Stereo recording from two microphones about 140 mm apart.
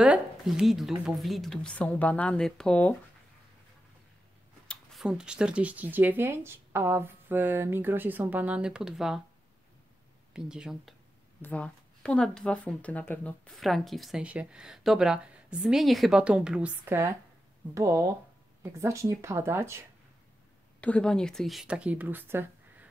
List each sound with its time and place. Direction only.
0.0 s speech: 5° right (ahead or behind)
4.6 s speech: centre (ahead or behind)
10.3 s speech: 5° right (ahead or behind)
11.4 s speech: 10° left (ahead or behind)
13.6 s speech: centre (ahead or behind); by 19.8 s 20° right (ahead or behind)
20.8 s speech: 5° left (ahead or behind); by 22.8 s 15° right (ahead or behind)